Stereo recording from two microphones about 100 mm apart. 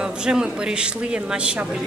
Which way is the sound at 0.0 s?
5° right (ahead or behind).